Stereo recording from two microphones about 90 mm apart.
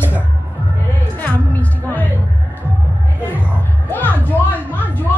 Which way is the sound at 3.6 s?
20° left (ahead or behind).